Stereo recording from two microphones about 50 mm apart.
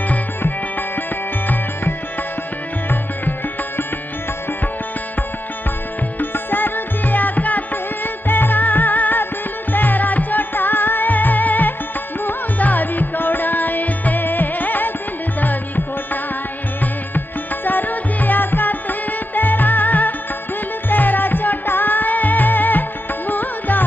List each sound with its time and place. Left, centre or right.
2.9 s music: left
6.1 s music: left
17.6 s music: left